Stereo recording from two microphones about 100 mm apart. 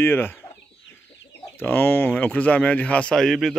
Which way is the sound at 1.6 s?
20° left (ahead or behind).